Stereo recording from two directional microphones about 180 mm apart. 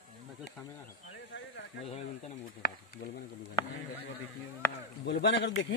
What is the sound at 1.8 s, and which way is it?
Speech, 35° left (ahead or behind).